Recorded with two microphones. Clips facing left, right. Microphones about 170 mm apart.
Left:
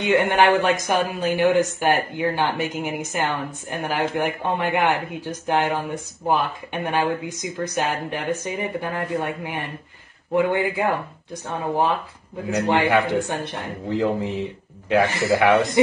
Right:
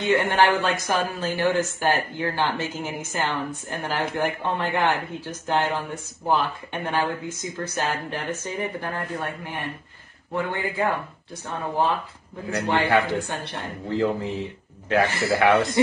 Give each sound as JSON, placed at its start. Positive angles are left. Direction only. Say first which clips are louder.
{"t": 0.0, "sound": "a woman's voice", "louder": "left 2 dB", "side_deg": 20}